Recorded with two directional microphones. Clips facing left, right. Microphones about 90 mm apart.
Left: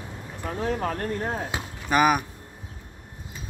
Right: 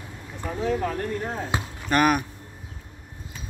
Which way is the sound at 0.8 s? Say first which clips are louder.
Even; 45° left (ahead or behind).